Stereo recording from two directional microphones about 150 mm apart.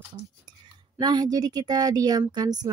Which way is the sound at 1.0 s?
25° right (ahead or behind).